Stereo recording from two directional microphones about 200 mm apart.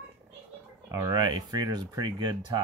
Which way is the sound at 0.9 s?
15° right (ahead or behind).